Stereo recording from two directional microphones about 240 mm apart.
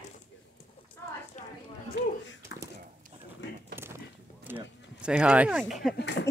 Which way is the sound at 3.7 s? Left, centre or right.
Centre.